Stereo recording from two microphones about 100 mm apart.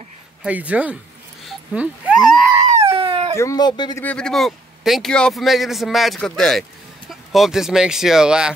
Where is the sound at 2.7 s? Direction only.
65° right (ahead or behind).